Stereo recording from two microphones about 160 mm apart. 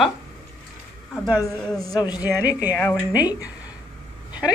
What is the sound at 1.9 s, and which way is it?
Speech, 25° left (ahead or behind).